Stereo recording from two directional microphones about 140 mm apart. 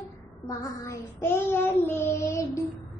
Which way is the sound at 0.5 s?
25° left (ahead or behind).